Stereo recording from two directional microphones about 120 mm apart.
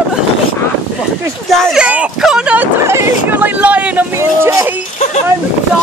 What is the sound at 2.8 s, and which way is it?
Speech, 20° right (ahead or behind).